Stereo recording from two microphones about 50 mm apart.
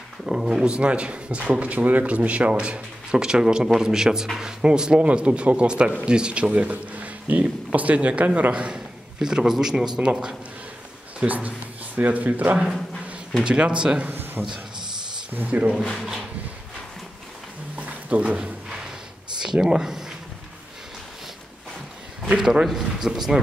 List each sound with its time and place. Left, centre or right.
0.3 s speech: centre
0.7 s a man's voice: right
11.1 s speech: right
13.4 s speech: centre
14.0 s a sound: right
15.3 s speech: right
17.7 s a sound: right
19.4 s speech: centre
22.4 s speech: centre